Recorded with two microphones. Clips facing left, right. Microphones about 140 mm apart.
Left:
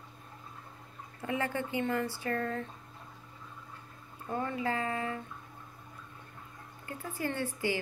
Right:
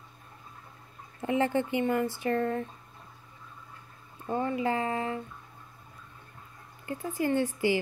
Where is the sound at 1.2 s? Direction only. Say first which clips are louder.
Right 7 dB; 25° right (ahead or behind).